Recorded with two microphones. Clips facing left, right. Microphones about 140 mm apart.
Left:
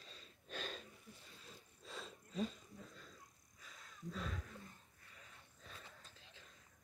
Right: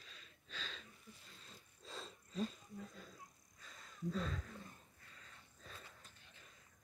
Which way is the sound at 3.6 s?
Centre (ahead or behind).